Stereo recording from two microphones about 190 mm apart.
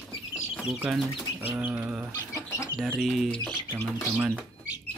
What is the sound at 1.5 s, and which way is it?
Bird, 10° right (ahead or behind).